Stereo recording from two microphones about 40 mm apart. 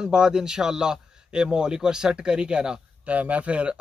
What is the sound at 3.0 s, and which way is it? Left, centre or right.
Speech, right.